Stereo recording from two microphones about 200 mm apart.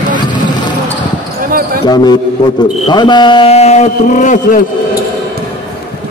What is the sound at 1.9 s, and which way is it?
A man's voice, 20° left (ahead or behind).